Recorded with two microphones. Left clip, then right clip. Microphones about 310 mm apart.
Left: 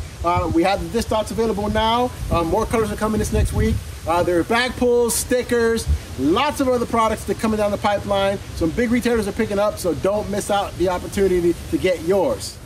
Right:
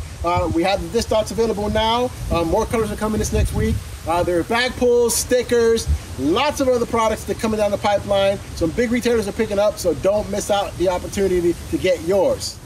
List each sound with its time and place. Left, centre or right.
0.2 s speech: centre